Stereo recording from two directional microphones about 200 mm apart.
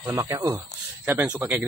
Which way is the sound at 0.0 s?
15° right (ahead or behind).